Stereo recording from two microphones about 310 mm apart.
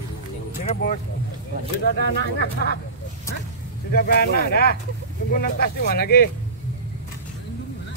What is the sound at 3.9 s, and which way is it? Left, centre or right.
Speech, left.